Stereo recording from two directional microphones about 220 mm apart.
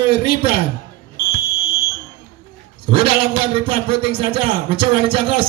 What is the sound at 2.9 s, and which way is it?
Speech, 25° right (ahead or behind).